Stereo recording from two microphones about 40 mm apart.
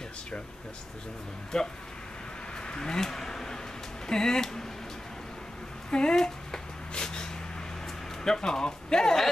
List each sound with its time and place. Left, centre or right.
1.5 s speech: centre
2.6 s speech: left
5.9 s speech: left
6.1 s a sound: centre
8.2 s speech: centre